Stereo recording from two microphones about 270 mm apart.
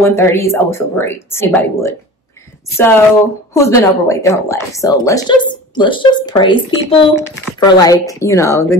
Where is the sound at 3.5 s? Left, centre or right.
Centre.